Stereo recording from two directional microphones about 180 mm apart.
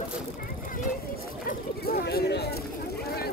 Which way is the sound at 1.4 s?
60° left (ahead or behind).